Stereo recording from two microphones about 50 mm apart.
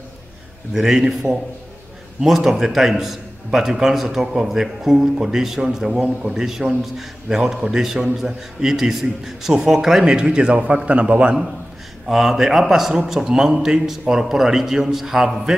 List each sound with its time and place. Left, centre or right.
0.7 s a man's voice: centre
2.2 s a man's voice: centre; by 11.3 s right
12.1 s a man's voice: centre